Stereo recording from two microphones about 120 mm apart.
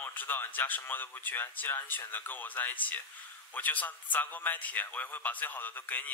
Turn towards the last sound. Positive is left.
turn(degrees=15)  # may be behind; listen again after turning